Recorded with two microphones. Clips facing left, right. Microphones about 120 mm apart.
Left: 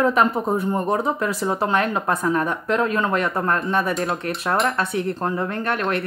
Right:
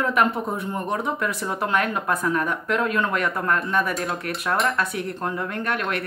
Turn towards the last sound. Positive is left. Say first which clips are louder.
# left 3 dB
turn(degrees=30)  # may be behind; listen again after turning